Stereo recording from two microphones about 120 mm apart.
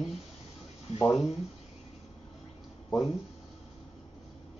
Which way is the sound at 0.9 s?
25° left (ahead or behind).